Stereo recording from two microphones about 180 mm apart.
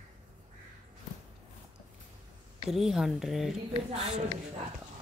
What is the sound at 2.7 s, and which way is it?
Speech, centre (ahead or behind).